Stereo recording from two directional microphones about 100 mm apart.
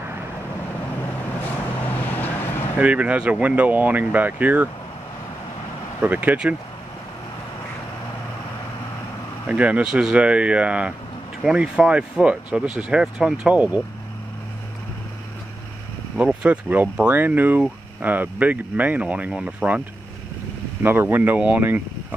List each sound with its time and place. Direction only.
1.9 s vehicle: 15° left (ahead or behind)
2.8 s speech: 15° right (ahead or behind)
6.0 s speech: 10° right (ahead or behind)
9.5 s speech: 15° right (ahead or behind)
16.2 s speech: 15° right (ahead or behind)
20.8 s speech: 20° right (ahead or behind)